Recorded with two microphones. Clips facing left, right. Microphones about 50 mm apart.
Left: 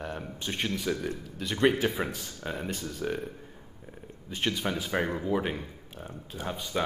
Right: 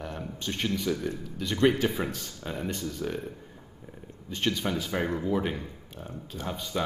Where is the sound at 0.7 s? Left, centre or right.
Centre.